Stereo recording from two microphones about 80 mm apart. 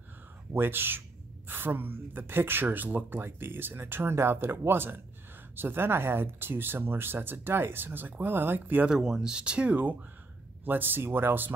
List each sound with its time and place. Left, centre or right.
0.5 s speech: right
8.8 s speech: centre; by 11.5 s right